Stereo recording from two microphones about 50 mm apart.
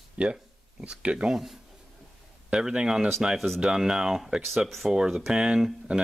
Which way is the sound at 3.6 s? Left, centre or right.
Centre.